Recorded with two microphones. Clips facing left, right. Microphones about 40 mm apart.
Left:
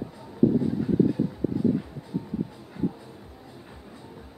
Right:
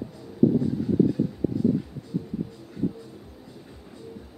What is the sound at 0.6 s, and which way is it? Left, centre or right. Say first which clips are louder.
Train: even; centre.